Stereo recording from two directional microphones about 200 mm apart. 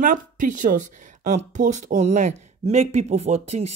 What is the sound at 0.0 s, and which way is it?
Speech, 40° right (ahead or behind).